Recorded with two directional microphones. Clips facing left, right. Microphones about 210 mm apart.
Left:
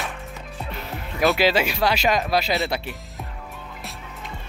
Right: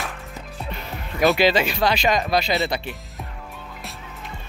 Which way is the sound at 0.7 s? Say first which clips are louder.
Right 1 dB; centre (ahead or behind).